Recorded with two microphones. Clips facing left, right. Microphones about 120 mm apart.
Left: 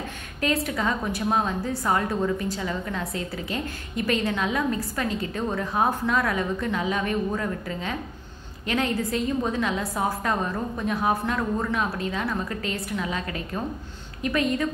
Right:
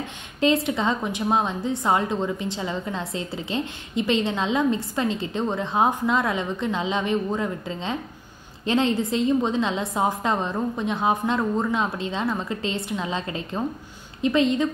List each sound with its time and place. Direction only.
0.7 s a woman's voice: 25° right (ahead or behind)